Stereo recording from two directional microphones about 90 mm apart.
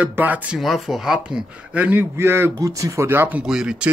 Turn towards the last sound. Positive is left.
turn(degrees=-10)  # may be behind; listen again after turning